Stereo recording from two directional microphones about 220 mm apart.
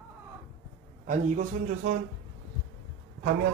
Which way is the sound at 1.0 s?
35° right (ahead or behind).